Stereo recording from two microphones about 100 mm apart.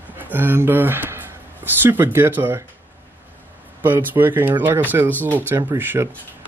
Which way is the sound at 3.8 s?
20° right (ahead or behind).